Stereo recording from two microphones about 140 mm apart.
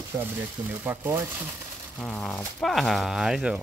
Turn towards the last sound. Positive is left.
turn(degrees=-5)  # may be behind; listen again after turning